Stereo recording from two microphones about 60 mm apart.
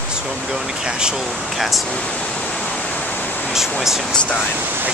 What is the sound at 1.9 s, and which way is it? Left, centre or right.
Pink noise, centre.